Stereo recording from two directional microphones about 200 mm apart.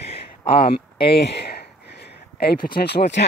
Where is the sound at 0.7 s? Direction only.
55° left (ahead or behind).